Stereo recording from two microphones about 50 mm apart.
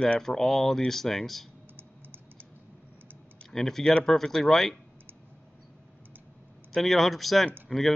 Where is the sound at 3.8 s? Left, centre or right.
Centre.